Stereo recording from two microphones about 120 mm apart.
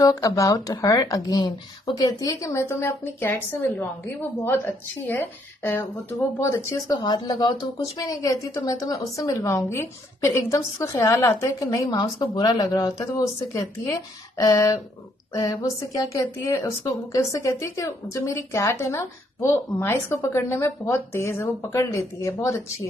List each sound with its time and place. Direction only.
0.0 s a woman's voice: 30° left (ahead or behind)
7.0 s a woman's voice: 40° left (ahead or behind)